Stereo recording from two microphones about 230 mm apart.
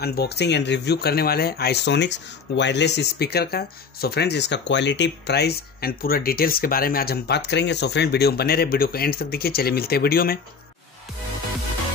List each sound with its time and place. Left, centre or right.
0.0 s speech: left